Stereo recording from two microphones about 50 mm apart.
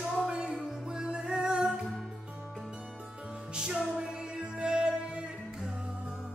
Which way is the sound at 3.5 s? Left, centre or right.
Centre.